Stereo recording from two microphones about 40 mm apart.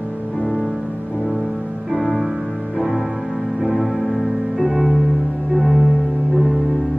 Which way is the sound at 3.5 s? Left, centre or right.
Centre.